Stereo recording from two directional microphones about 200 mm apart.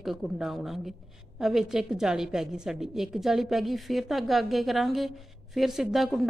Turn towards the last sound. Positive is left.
turn(degrees=0)  # may be behind; listen again after turning